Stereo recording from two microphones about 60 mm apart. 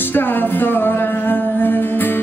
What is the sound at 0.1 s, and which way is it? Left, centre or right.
Music, left.